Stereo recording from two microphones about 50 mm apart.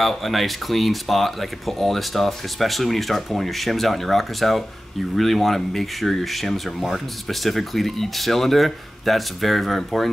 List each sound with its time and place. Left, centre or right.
0.0 s speech: centre